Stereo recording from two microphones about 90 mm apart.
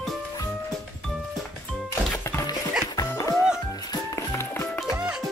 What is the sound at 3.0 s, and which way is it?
Music, 40° left (ahead or behind).